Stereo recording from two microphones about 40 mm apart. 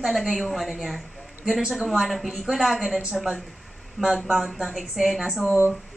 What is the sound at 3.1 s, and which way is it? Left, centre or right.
Speech, centre.